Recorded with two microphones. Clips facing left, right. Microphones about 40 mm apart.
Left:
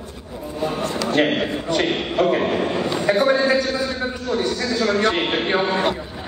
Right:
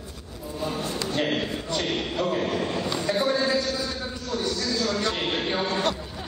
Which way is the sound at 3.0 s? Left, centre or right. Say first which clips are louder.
Left 7 dB; left.